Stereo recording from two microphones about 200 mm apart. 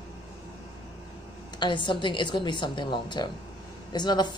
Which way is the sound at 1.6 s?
25° left (ahead or behind).